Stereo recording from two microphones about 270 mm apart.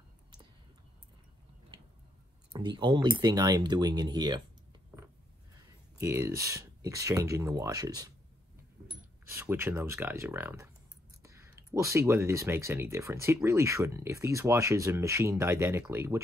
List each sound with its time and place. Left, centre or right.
2.5 s speech: centre
4.9 s a sound: centre
5.9 s speech: centre
9.3 s speech: centre